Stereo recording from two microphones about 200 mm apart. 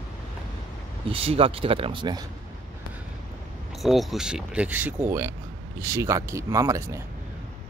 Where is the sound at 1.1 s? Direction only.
30° right (ahead or behind).